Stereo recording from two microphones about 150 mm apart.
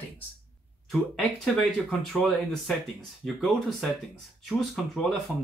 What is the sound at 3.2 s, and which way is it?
Speech, centre (ahead or behind).